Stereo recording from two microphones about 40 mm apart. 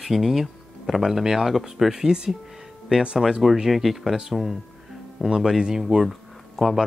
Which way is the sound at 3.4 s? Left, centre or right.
Centre.